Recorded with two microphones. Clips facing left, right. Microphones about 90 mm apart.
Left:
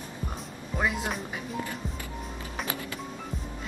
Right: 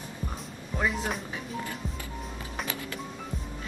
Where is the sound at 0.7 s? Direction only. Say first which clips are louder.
Even; 5° left (ahead or behind).